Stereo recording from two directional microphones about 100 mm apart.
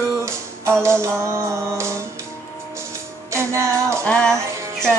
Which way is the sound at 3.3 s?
25° right (ahead or behind).